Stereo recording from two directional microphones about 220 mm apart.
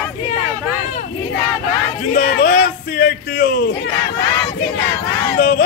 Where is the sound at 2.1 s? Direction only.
40° left (ahead or behind).